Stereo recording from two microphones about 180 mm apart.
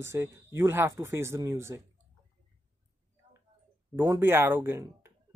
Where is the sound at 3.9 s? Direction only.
15° right (ahead or behind).